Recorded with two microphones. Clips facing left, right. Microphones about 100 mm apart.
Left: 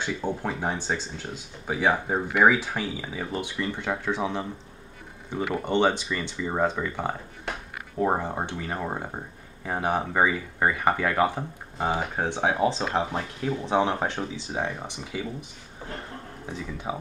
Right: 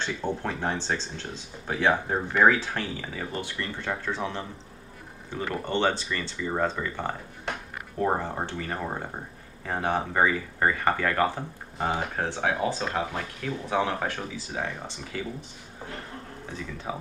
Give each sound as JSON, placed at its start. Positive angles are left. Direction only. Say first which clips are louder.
{"t": 0.0, "sound": "speech", "louder": "left 1 dB", "side_deg": 10}
{"t": 16.5, "sound": "speech", "louder": "left 2 dB", "side_deg": 15}